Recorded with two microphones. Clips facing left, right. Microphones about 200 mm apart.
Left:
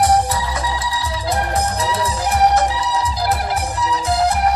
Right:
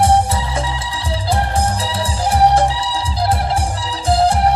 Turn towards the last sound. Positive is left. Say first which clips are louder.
# right 3 dB
turn(degrees=-30)  # may be behind; listen again after turning